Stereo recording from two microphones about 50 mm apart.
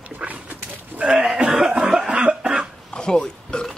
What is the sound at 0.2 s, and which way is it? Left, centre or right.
Dog, right.